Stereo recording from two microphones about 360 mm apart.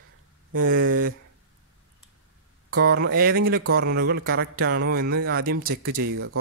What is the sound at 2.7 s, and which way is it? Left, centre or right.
Speech, right.